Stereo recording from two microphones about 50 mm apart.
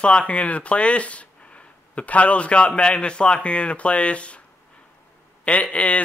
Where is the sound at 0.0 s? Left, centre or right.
Left.